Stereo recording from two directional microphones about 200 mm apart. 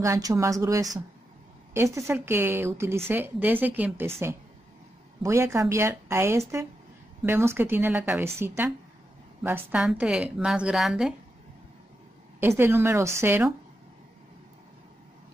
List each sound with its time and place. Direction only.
0.0 s a woman's voice: 15° right (ahead or behind)
5.2 s a woman's voice: 15° right (ahead or behind)
12.4 s a woman's voice: 10° right (ahead or behind)